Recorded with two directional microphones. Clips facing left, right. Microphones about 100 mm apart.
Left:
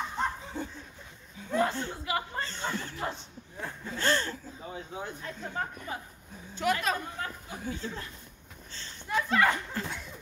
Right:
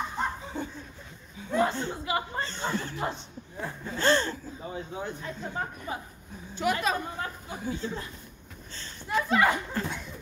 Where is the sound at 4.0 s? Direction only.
30° right (ahead or behind).